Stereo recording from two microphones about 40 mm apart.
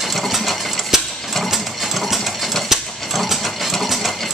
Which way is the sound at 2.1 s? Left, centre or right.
Centre.